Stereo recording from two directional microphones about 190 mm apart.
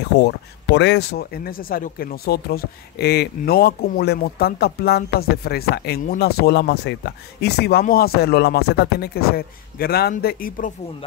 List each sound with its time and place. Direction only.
0.2 s speech: 65° left (ahead or behind); by 10.7 s 50° left (ahead or behind)